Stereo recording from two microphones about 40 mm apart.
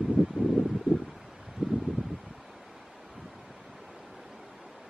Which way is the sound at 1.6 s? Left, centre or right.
Centre.